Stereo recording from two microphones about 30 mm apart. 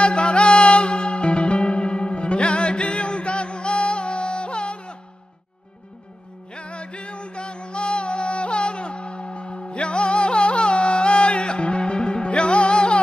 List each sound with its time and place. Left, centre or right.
0.0 s music: left
6.5 s music: left